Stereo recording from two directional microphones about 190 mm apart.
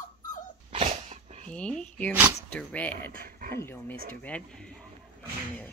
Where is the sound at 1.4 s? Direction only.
5° left (ahead or behind).